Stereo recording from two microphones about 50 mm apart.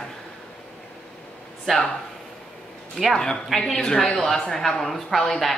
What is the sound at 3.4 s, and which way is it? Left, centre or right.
Speech, centre.